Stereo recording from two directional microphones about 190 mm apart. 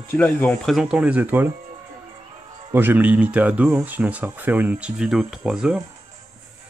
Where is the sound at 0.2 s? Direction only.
5° left (ahead or behind); by 1.5 s 10° right (ahead or behind).